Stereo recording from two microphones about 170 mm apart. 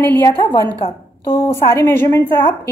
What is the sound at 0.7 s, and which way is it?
Speech, 30° left (ahead or behind).